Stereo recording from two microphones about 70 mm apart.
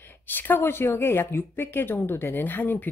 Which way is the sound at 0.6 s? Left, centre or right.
Left.